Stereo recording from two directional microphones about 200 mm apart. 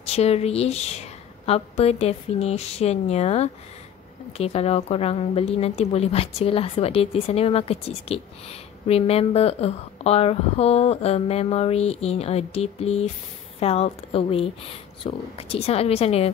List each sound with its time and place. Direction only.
0.0 s a woman's voice: 30° left (ahead or behind)